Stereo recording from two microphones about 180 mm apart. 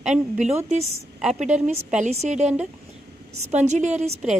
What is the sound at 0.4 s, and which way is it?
A woman's voice, 40° right (ahead or behind).